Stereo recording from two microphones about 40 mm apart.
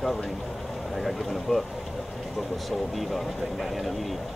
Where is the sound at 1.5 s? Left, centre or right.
Left.